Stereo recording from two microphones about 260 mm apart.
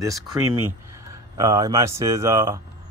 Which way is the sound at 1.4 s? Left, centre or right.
Centre.